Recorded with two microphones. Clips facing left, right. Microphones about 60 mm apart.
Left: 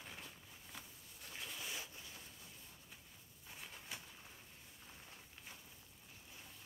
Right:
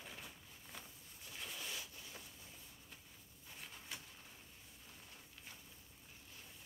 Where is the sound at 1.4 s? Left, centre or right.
Centre.